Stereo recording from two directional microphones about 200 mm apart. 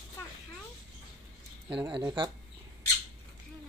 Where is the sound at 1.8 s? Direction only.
20° right (ahead or behind).